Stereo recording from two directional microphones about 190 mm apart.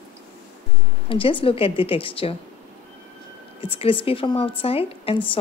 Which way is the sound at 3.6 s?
30° left (ahead or behind).